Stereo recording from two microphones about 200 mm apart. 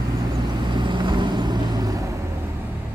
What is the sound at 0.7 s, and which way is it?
Vehicle, 25° right (ahead or behind).